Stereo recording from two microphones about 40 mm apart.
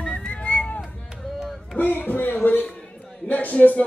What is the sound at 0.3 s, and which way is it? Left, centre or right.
Music, left.